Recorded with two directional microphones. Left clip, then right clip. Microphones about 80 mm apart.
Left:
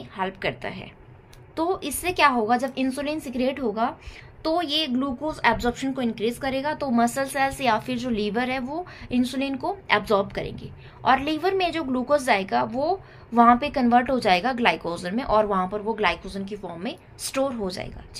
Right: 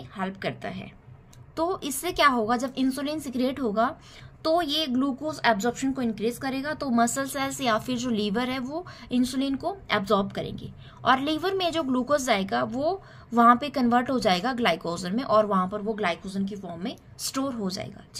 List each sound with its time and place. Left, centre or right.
0.1 s a woman's voice: right
1.5 s a woman's voice: right